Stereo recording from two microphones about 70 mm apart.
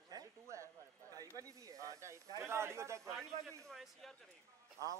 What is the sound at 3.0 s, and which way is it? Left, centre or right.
Speech, centre.